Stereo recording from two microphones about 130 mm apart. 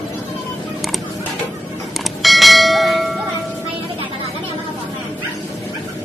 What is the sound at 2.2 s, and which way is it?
Bell, centre (ahead or behind).